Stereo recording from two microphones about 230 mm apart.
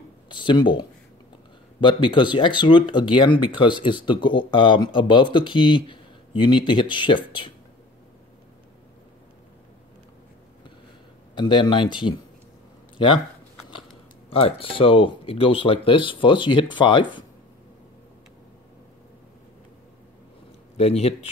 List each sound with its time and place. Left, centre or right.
0.3 s speech: centre
11.3 s speech: left
14.3 s speech: left
20.7 s speech: left